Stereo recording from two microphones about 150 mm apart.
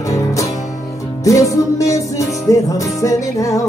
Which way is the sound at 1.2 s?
20° left (ahead or behind).